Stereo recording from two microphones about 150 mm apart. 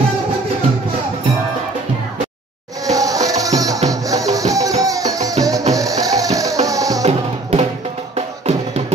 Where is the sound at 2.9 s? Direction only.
25° right (ahead or behind).